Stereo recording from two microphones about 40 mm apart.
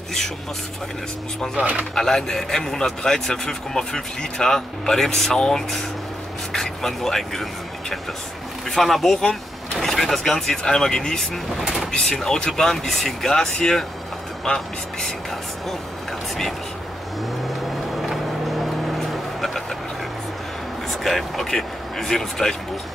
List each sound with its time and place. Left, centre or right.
1.6 s speech: right
2.0 s a man's voice: centre
8.6 s speech: centre
9.3 s vehicle: centre
10.7 s a man's voice: centre
11.6 s speech: centre
12.2 s a man's voice: centre
17.6 s vehicle: centre
20.9 s speech: centre